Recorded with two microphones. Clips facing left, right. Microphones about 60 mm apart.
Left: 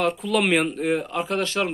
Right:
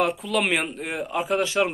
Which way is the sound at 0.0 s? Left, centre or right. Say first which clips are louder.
Left 1 dB; centre.